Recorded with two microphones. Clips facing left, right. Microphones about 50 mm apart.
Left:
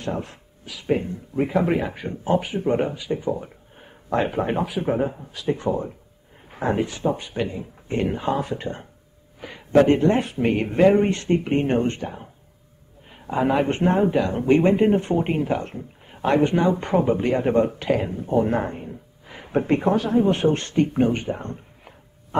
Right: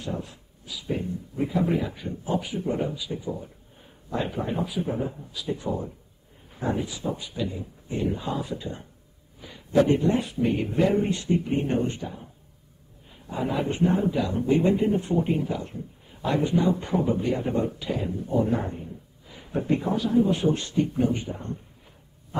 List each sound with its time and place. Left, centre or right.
0.0 s speech: left
18.2 s speech: left